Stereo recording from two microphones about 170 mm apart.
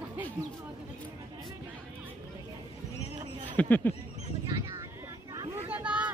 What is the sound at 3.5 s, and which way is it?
Speech, 10° left (ahead or behind).